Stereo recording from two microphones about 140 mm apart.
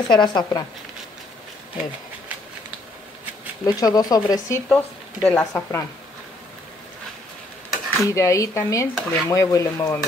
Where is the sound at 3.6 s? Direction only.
25° left (ahead or behind).